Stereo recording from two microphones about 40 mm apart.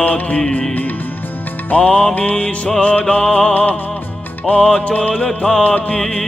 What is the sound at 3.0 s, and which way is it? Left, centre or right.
Music, centre.